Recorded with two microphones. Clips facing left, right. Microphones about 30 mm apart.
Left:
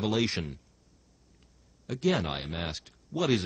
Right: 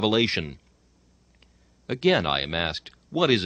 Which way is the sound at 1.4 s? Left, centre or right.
Right.